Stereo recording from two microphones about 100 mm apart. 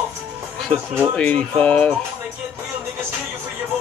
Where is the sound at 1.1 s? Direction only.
15° left (ahead or behind).